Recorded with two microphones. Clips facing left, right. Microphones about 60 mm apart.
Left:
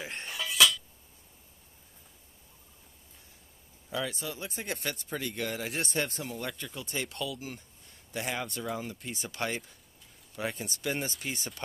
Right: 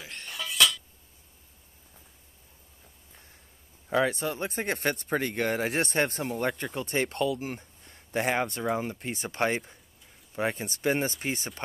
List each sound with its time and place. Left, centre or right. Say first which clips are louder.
0.0 s cutlery: left 3 dB; left
0.3 s cutlery: even; centre
3.9 s speech: right 9 dB; right